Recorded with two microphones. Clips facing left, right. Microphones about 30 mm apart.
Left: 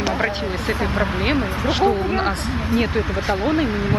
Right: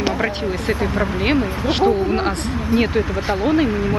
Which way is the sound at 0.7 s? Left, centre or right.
Left.